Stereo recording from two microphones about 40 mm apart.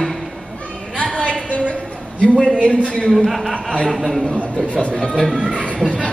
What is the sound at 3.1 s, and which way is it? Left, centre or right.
A man's voice, centre.